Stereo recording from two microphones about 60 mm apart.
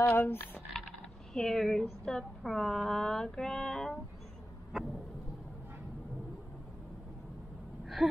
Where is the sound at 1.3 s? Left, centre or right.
Centre.